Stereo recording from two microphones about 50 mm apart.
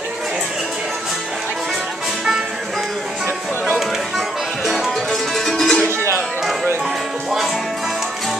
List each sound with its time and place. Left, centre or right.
4.6 s music: centre
5.9 s music: right